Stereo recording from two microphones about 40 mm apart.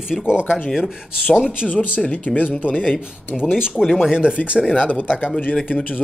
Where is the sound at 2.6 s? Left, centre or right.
Centre.